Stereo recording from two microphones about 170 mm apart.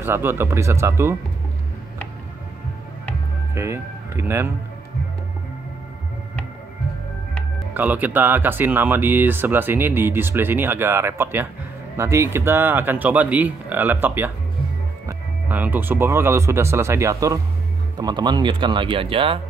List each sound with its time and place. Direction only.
0.0 s speech: 15° right (ahead or behind)
3.5 s speech: 15° right (ahead or behind)
7.7 s speech: 10° right (ahead or behind); by 19.4 s 30° right (ahead or behind)